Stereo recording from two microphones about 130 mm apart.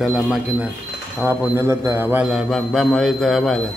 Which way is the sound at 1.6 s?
20° right (ahead or behind).